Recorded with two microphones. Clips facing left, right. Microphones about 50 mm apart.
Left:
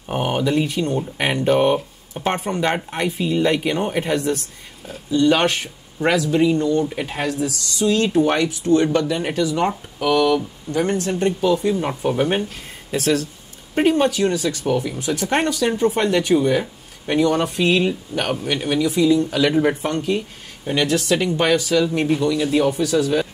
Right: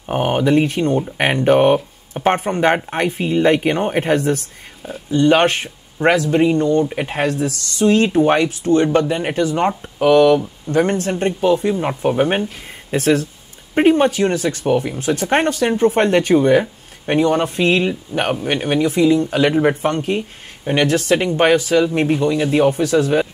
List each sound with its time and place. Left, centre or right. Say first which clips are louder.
0.1 s speech: right 4 dB; right
17.1 s speech: right 2 dB; right